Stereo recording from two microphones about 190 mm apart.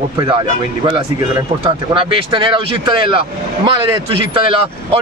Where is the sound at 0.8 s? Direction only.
25° right (ahead or behind).